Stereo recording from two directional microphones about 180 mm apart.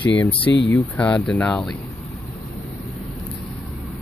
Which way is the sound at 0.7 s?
10° left (ahead or behind).